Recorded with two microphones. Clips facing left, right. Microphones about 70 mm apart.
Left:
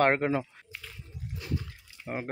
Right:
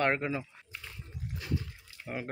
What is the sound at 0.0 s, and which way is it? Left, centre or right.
Speech, left.